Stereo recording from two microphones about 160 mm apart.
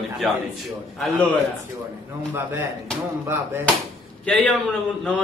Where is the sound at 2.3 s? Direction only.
15° right (ahead or behind).